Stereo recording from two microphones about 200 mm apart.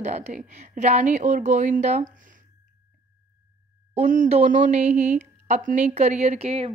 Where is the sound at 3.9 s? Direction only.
40° right (ahead or behind).